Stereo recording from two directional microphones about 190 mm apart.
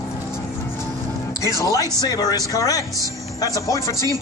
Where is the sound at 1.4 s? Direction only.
15° left (ahead or behind).